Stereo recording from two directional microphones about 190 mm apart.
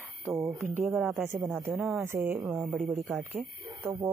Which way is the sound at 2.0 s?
10° right (ahead or behind).